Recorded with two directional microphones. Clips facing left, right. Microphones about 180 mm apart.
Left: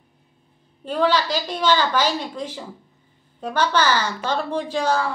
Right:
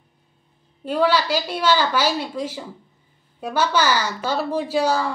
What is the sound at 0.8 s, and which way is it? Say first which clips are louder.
Speech: right 1 dB; 10° right (ahead or behind).